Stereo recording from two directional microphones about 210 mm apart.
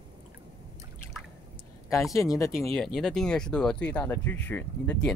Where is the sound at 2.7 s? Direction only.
Centre (ahead or behind).